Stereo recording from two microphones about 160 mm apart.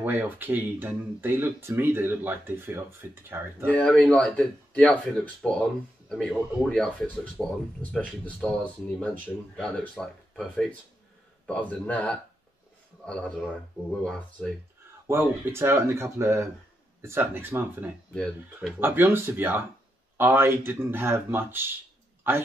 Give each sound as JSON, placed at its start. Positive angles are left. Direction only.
{"t": 0.0, "sound": "speech", "side_deg": -10}
{"t": 3.7, "sound": "speech", "side_deg": 10}
{"t": 15.0, "sound": "speech", "side_deg": -15}
{"t": 18.1, "sound": "speech", "side_deg": 5}
{"t": 18.8, "sound": "speech", "side_deg": -15}